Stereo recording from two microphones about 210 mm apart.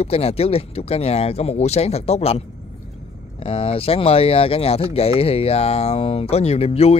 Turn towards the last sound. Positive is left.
turn(degrees=30)  # may be behind; listen again after turning